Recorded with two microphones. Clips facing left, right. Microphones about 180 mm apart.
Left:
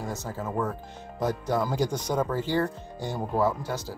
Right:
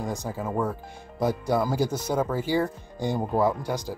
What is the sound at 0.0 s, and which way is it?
Speech, 15° right (ahead or behind).